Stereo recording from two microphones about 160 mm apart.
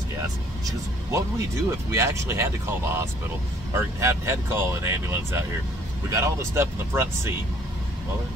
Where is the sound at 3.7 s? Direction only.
20° right (ahead or behind).